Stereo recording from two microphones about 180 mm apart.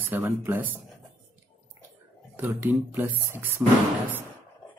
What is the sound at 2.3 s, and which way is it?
A man's voice, 10° right (ahead or behind).